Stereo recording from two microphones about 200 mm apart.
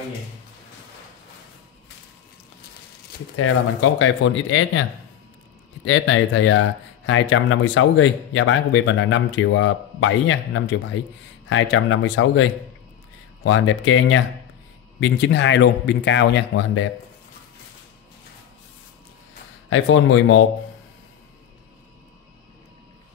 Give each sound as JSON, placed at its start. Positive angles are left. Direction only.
{"t": 4.0, "sound": "speech", "side_deg": 70}
{"t": 5.9, "sound": "speech", "side_deg": 75}
{"t": 15.0, "sound": "speech", "side_deg": 60}
{"t": 19.7, "sound": "speech", "side_deg": 70}